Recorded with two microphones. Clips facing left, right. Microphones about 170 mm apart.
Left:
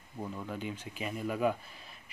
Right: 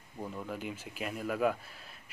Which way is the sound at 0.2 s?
5° right (ahead or behind).